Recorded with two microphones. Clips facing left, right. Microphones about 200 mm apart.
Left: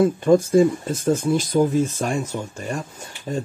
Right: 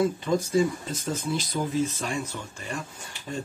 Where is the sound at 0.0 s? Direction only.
50° left (ahead or behind).